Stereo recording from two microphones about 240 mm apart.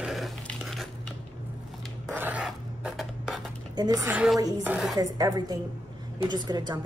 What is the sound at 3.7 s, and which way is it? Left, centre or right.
A woman's voice, centre.